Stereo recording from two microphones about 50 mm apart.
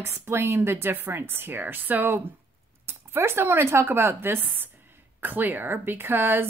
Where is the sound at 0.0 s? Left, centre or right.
Right.